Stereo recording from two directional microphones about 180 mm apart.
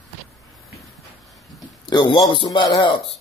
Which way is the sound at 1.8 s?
25° left (ahead or behind).